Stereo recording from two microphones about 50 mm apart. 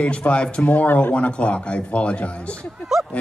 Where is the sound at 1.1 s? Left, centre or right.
Left.